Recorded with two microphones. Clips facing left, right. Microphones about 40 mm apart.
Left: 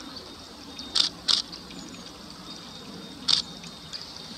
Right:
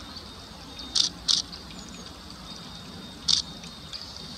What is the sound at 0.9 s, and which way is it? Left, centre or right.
Vehicle, centre.